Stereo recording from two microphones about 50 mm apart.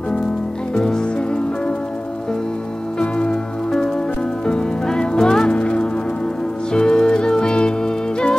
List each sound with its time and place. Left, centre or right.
0.7 s music: centre
3.0 s music: centre
5.6 s music: left